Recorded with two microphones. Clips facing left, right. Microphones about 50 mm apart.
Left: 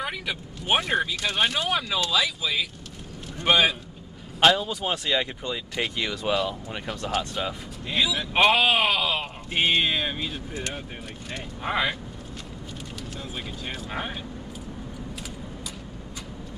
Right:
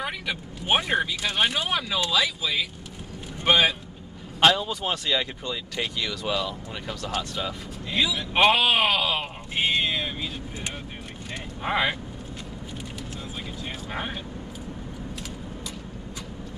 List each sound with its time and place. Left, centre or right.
0.0 s speech: centre
7.9 s speech: centre
9.5 s a sound: left
11.6 s speech: centre
13.8 s speech: centre